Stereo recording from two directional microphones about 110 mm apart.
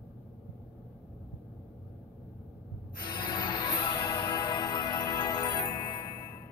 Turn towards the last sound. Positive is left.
turn(degrees=35)  # may be behind; listen again after turning